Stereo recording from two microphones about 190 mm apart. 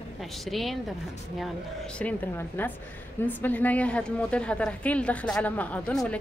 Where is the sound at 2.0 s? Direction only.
10° left (ahead or behind).